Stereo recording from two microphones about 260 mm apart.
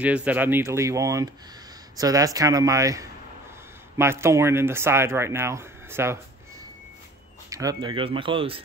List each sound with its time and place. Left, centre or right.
0.0 s speech: centre
7.4 s speech: centre